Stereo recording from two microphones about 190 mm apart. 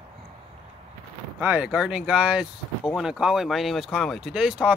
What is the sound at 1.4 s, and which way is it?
Speech, 5° right (ahead or behind).